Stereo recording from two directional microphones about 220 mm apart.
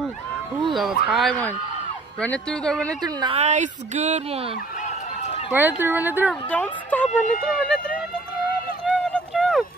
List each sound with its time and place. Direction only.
0.7 s a woman's voice: centre (ahead or behind)
3.2 s speech: 25° right (ahead or behind)
4.8 s run: 30° left (ahead or behind)
5.5 s speech: 10° right (ahead or behind)
6.5 s a woman's voice: 5° left (ahead or behind)
8.8 s run: centre (ahead or behind)